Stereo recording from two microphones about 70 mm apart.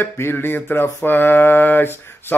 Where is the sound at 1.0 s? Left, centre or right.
Left.